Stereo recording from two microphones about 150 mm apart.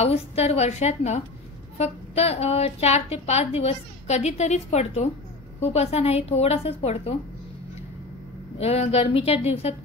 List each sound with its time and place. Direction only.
0.0 s a woman's voice: 45° left (ahead or behind)
8.5 s a woman's voice: 45° left (ahead or behind)